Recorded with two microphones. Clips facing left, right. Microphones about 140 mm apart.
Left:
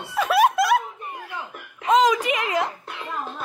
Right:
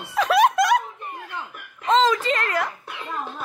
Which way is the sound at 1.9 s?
15° left (ahead or behind).